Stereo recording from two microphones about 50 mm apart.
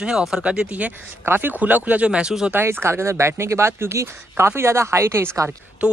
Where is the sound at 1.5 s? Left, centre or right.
Right.